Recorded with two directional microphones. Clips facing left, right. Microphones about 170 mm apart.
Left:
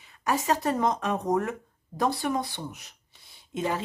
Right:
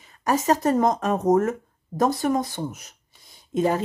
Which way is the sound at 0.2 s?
40° right (ahead or behind).